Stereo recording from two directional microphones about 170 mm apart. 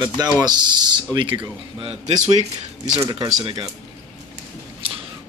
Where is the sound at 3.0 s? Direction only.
25° right (ahead or behind).